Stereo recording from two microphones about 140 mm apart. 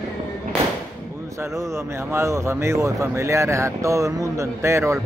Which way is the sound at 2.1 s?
20° right (ahead or behind).